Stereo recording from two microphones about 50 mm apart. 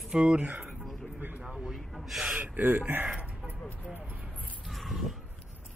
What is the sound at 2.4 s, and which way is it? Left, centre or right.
Speech, right.